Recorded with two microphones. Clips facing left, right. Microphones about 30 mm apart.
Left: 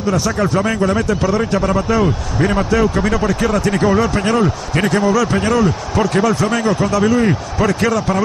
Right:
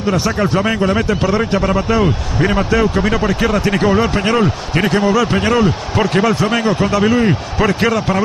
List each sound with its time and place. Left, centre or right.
0.0 s speech: right
5.0 s speech: right